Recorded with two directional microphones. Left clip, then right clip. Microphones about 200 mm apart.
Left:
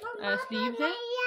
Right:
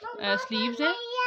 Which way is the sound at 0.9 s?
65° left (ahead or behind).